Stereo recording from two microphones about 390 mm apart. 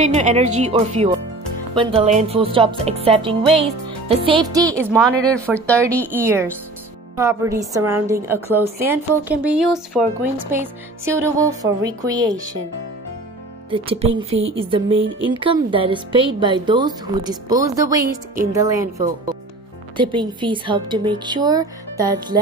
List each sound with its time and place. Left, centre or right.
0.0 s a woman's voice: centre
13.7 s a woman's voice: centre